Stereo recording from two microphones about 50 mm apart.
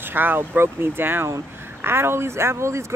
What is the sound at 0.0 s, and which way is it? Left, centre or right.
Speech, right.